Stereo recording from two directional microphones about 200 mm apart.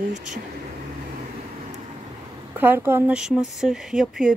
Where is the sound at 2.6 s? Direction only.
10° right (ahead or behind).